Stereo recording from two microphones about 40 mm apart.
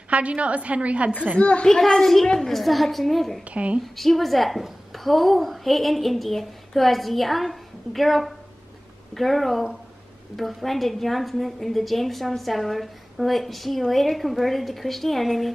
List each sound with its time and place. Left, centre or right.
0.1 s a woman's voice: right
1.4 s a child's voice: left
1.7 s a child's voice: centre
2.5 s a woman's voice: centre
3.4 s a woman's voice: right
3.8 s a woman's voice: centre